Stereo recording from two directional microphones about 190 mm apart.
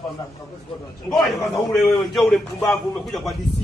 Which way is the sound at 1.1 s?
Centre (ahead or behind).